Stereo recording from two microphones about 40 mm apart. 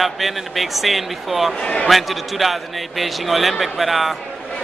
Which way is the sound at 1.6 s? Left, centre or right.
Left.